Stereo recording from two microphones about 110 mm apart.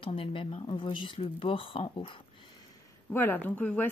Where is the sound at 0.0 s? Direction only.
55° left (ahead or behind).